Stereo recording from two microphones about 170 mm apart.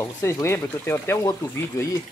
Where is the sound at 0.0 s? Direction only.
15° left (ahead or behind).